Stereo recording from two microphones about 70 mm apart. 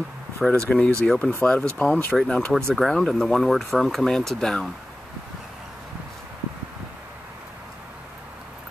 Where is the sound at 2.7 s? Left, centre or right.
Centre.